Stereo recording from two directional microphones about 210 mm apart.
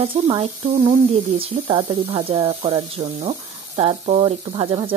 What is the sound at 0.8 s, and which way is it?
Speech, 40° right (ahead or behind).